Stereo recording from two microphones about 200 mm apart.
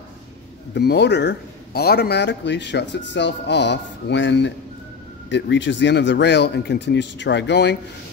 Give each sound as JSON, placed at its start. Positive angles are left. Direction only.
{"t": 0.7, "sound": "speech", "side_deg": 55}